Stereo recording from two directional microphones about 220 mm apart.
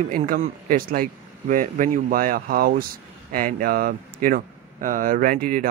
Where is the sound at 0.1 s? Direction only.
40° right (ahead or behind).